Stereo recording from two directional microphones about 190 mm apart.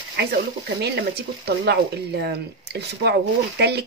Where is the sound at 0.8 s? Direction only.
60° right (ahead or behind).